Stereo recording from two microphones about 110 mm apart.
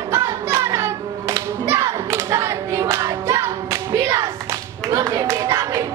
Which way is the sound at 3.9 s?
25° right (ahead or behind).